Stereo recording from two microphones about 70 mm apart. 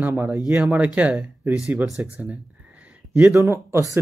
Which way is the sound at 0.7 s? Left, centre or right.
Right.